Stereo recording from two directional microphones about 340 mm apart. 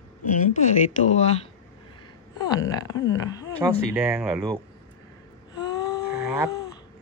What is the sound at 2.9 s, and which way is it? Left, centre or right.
Speech, left.